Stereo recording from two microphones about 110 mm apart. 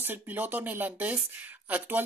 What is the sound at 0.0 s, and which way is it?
Speech, 15° right (ahead or behind).